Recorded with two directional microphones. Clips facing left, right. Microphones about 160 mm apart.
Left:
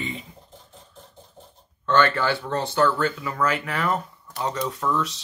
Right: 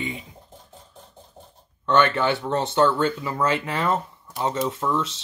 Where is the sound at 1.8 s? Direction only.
20° right (ahead or behind).